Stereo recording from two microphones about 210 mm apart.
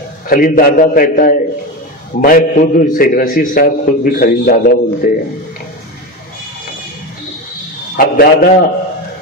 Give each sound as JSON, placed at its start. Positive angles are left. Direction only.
{"t": 0.3, "sound": "a man's voice", "side_deg": 40}
{"t": 7.9, "sound": "a man's voice", "side_deg": 45}